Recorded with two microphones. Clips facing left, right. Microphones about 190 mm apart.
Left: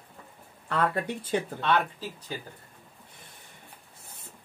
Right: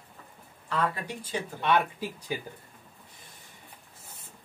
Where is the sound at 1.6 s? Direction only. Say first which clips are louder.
Right 1 dB; 10° right (ahead or behind).